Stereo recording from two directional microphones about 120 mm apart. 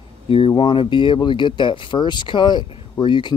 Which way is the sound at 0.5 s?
40° left (ahead or behind).